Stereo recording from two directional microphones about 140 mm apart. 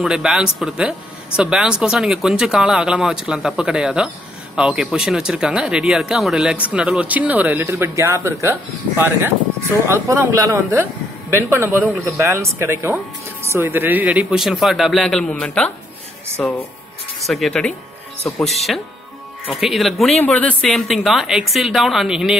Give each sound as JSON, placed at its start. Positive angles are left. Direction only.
{"t": 0.0, "sound": "speech", "side_deg": -5}
{"t": 9.8, "sound": "speech", "side_deg": -20}